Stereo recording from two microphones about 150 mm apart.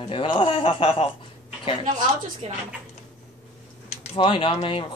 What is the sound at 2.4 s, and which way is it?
Speech, 45° right (ahead or behind).